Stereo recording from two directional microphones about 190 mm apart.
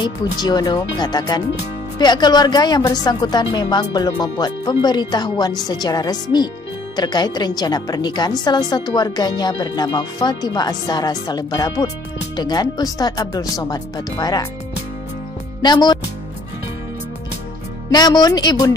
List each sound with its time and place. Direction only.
0.0 s a woman's voice: 20° left (ahead or behind)
15.6 s a woman's voice: 20° left (ahead or behind)
17.9 s a woman's voice: 20° left (ahead or behind)